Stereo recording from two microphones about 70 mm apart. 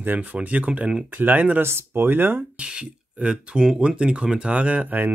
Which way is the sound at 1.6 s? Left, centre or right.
Right.